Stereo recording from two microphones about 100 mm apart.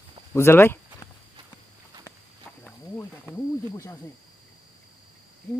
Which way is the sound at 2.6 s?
15° left (ahead or behind).